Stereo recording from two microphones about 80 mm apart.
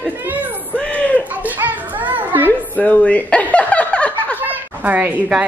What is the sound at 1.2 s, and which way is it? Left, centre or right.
Children playing, centre.